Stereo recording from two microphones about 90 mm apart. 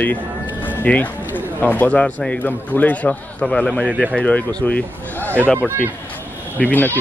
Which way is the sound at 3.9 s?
15° right (ahead or behind).